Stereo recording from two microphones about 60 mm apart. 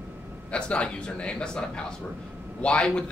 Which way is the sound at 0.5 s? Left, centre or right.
Centre.